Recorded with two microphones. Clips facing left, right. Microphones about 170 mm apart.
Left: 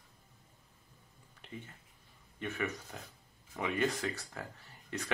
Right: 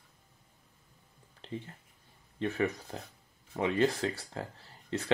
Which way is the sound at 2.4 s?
35° right (ahead or behind).